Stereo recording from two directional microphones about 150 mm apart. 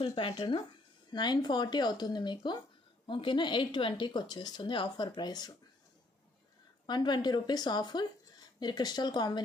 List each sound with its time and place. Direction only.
0.0 s speech: 40° left (ahead or behind)
0.3 s a woman's voice: 30° left (ahead or behind)
6.9 s a woman's voice: 30° left (ahead or behind)